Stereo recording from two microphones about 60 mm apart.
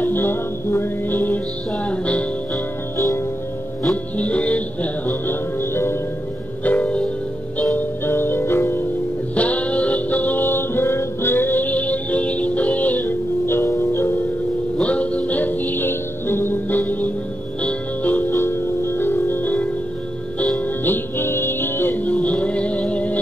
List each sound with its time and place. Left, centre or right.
0.0 s music: left
1.9 s music: left
3.9 s music: left
5.3 s music: left
6.6 s music: left
7.7 s music: left
9.3 s music: left
13.5 s music: left
14.8 s music: left
18.3 s music: left
20.8 s music: left